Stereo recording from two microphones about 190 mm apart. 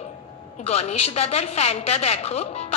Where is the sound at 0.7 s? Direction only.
35° left (ahead or behind).